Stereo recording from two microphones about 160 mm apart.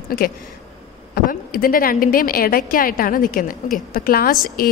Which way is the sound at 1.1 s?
65° left (ahead or behind).